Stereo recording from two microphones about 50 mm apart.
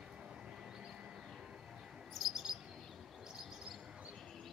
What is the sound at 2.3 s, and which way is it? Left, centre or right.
Chirp, centre.